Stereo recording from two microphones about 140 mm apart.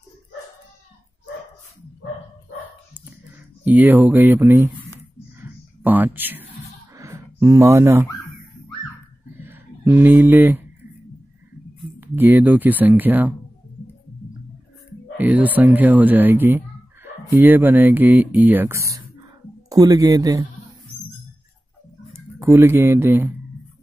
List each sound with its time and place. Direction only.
3.6 s speech: 10° right (ahead or behind)
5.4 s a sound: 15° right (ahead or behind)
9.4 s a sound: 15° right (ahead or behind)
12.0 s speech: 15° right (ahead or behind)
15.1 s speech: 10° right (ahead or behind); by 20.4 s 25° right (ahead or behind)
22.1 s speech: 20° right (ahead or behind)